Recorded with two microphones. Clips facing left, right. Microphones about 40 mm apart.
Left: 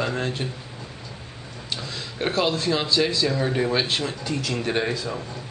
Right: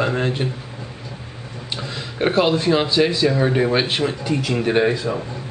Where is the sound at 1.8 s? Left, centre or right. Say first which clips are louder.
Right 7 dB; right.